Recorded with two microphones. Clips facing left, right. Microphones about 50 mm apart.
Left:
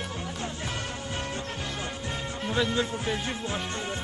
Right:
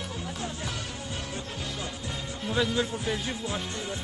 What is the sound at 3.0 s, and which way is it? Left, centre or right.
Music, left.